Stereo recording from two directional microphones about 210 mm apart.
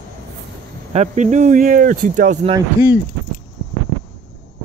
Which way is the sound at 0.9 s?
35° right (ahead or behind).